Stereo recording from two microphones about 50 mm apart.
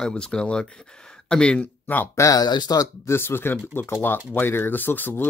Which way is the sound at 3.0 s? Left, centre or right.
Left.